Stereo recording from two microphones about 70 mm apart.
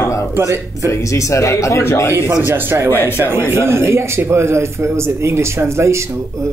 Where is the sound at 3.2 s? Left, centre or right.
Right.